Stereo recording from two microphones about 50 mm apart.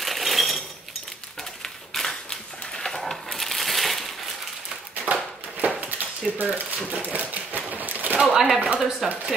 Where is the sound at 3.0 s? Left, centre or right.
Centre.